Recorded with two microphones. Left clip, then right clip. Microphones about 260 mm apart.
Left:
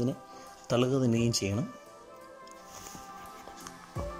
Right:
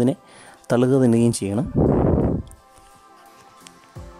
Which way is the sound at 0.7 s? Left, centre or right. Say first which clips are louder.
Right 10 dB; right.